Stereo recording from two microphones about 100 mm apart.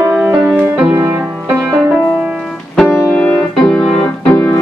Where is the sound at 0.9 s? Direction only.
35° right (ahead or behind).